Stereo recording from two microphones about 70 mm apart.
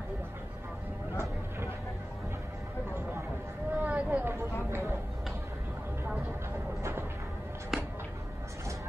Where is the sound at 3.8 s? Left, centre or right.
Right.